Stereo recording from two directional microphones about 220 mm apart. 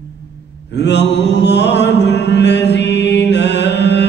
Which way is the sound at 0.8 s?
50° left (ahead or behind).